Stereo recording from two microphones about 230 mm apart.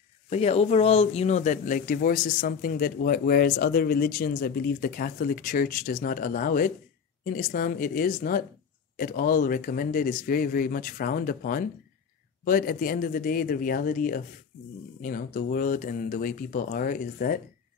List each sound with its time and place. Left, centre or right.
0.3 s speech: left